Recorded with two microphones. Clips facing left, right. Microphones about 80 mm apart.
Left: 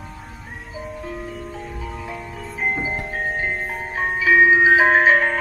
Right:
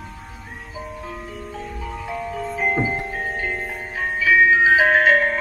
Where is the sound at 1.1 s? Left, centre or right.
Centre.